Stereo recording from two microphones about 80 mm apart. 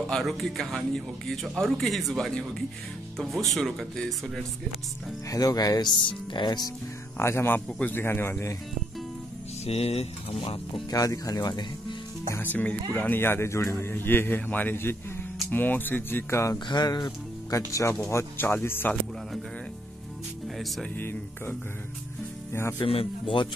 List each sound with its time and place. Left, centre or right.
0.1 s speech: centre
5.3 s speech: left
7.2 s a man's voice: left
10.9 s speech: left
12.3 s a man's voice: left
13.7 s speech: left
16.5 s speech: left
17.5 s a man's voice: left
18.4 s speech: left
21.0 s speech: left
22.8 s speech: left